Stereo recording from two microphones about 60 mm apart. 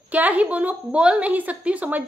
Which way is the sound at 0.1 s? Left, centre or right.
Right.